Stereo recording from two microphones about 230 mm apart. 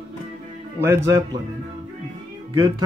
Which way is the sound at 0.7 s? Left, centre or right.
Centre.